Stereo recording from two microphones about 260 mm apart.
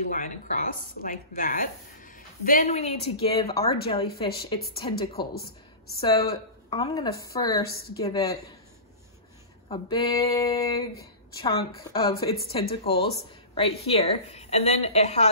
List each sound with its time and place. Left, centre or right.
0.1 s speech: left
5.3 s speech: left
5.9 s speech: centre
9.7 s speech: centre